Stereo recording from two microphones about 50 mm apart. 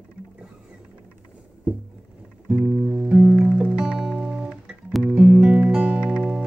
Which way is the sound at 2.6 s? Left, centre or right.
Right.